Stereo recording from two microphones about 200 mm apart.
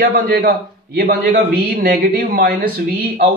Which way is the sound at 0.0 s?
50° right (ahead or behind).